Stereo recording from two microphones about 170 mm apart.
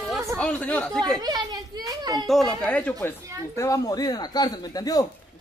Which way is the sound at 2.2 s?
Centre (ahead or behind).